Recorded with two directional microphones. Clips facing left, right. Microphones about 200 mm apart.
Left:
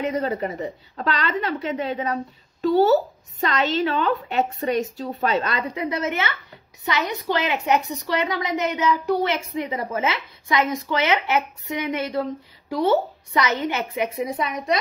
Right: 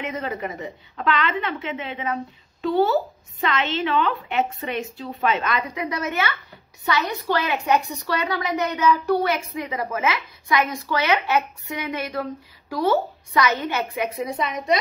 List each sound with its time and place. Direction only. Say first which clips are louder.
0.0 s a woman's voice: left 4 dB; 35° left (ahead or behind)